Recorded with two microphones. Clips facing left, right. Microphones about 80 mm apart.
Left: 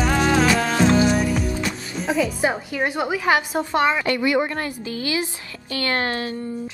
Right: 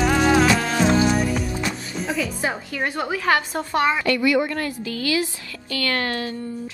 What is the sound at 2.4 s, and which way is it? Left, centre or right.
A woman's voice, centre.